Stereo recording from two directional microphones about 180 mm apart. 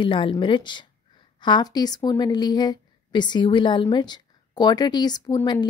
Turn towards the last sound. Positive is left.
turn(degrees=20)  # may be behind; listen again after turning